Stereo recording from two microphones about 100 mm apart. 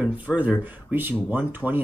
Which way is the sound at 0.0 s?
15° right (ahead or behind).